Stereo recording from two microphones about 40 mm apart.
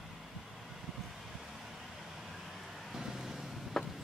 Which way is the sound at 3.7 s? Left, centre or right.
Centre.